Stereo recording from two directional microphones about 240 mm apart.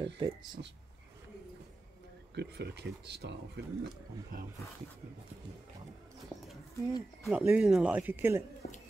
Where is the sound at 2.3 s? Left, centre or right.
Right.